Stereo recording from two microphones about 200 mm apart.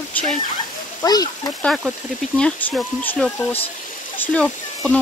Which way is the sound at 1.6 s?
5° left (ahead or behind).